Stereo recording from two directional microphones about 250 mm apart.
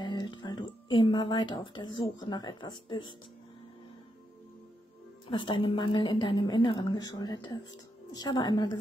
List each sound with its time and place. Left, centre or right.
0.0 s a sound: centre
2.1 s a woman's voice: centre
5.3 s a woman's voice: centre